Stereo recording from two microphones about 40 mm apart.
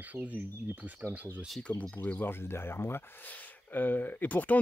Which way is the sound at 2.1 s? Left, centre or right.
Left.